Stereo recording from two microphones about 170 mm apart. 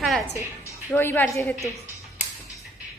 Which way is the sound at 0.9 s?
15° left (ahead or behind).